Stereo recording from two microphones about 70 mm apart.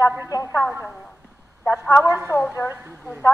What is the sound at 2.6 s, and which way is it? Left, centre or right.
Speech, left.